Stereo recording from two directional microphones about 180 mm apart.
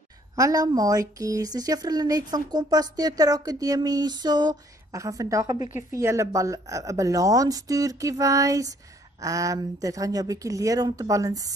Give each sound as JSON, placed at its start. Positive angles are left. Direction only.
{"t": 0.4, "sound": "speech", "side_deg": -20}